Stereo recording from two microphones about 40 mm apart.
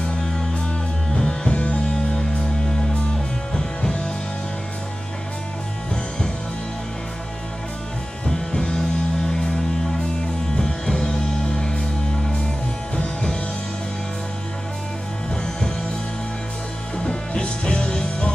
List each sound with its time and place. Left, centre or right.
1.1 s music: centre
1.5 s music: left
3.5 s music: centre
8.3 s music: centre
10.6 s music: centre
12.9 s music: left
16.9 s music: left